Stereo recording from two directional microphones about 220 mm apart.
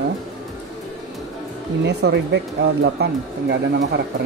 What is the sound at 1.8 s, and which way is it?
Speech, 50° right (ahead or behind).